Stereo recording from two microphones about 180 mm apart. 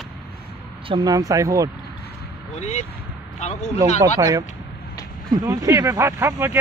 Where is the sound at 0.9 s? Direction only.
25° right (ahead or behind).